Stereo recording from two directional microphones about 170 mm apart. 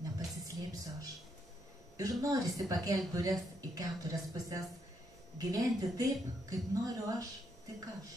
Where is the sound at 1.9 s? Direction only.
20° right (ahead or behind).